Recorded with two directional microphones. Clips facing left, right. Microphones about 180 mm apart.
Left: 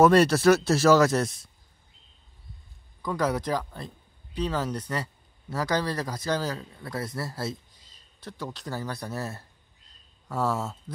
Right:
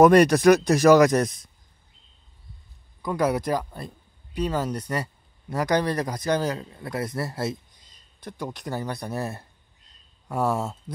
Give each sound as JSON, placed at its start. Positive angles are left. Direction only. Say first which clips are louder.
{"t": 0.0, "sound": "speech", "louder": "right 3 dB", "side_deg": -15}
{"t": 1.2, "sound": "speech", "louder": "right 3 dB", "side_deg": 0}
{"t": 3.0, "sound": "speech", "louder": "right 3 dB", "side_deg": -10}